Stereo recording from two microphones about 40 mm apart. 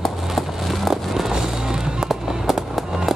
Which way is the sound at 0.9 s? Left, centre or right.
Centre.